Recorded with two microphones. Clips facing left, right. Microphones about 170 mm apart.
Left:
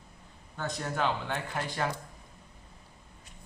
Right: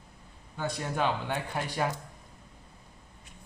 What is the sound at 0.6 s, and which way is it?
Speech, 10° right (ahead or behind).